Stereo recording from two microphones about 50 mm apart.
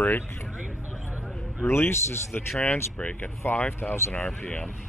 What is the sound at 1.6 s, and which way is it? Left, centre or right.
Speech, left.